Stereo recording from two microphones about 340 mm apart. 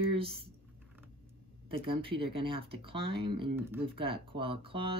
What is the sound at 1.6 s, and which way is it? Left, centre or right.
Speech, centre.